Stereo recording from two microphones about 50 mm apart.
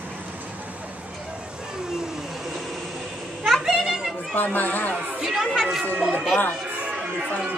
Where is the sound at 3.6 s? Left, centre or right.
Centre.